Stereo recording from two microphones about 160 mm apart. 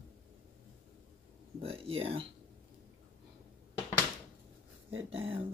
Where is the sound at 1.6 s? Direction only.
35° right (ahead or behind).